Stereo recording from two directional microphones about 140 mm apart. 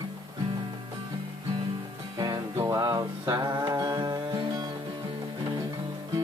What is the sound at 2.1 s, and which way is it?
Music, 25° right (ahead or behind).